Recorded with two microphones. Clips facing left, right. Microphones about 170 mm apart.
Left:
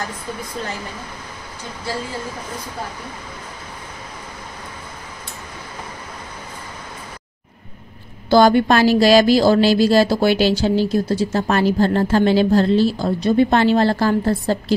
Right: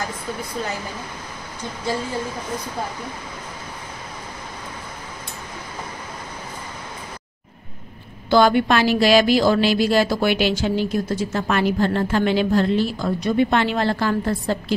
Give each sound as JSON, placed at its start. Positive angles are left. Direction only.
{"t": 8.3, "sound": "a woman's voice", "side_deg": 40}